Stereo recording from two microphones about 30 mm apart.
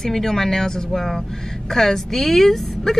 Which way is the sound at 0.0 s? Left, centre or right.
Centre.